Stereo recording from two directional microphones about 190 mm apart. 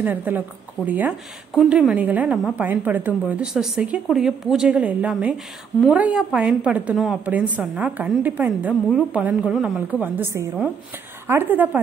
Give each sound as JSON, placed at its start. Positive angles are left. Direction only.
{"t": 0.0, "sound": "a woman's voice", "side_deg": -10}